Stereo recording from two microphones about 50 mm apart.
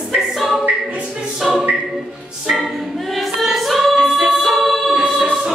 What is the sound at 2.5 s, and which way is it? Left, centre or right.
Choir, centre.